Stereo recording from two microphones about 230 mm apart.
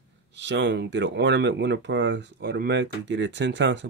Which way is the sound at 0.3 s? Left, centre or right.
Right.